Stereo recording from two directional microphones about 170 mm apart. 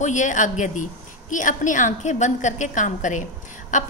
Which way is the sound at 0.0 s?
45° left (ahead or behind).